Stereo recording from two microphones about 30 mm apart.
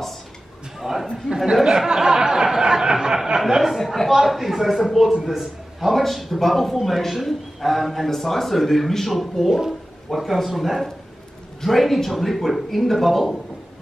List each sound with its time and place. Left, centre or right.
0.7 s a sound: centre
1.3 s speech: centre
2.0 s a sound: right
3.3 s speech: centre
3.7 s speech: centre
5.8 s speech: centre
9.5 s speech: centre
10.0 s speech: centre